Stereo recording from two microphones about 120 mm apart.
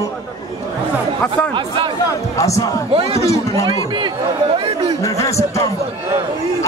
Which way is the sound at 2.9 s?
55° right (ahead or behind).